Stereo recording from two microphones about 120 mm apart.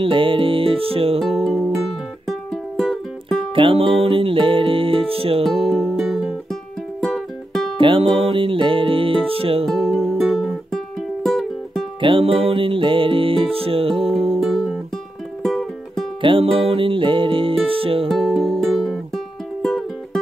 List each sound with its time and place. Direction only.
0.0 s music: 45° right (ahead or behind)
1.2 s music: 5° left (ahead or behind)
3.5 s music: 45° right (ahead or behind)
5.4 s music: centre (ahead or behind)
7.8 s music: 50° right (ahead or behind)
9.7 s music: 5° left (ahead or behind)
12.0 s music: 45° right (ahead or behind)
14.4 s music: 5° left (ahead or behind)
16.2 s music: 45° right (ahead or behind)
18.0 s music: 5° left (ahead or behind)